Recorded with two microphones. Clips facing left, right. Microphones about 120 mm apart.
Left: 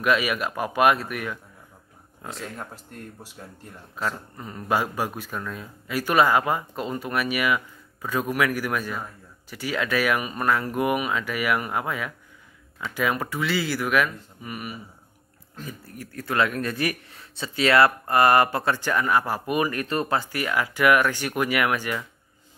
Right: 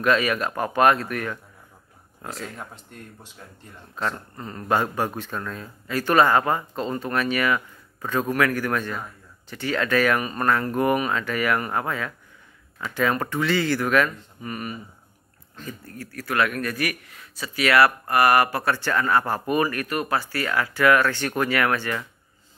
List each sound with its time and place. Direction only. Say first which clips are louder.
0.0 s a man's voice: right 2 dB; 10° left (ahead or behind)